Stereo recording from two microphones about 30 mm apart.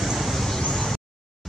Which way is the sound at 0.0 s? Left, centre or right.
Centre.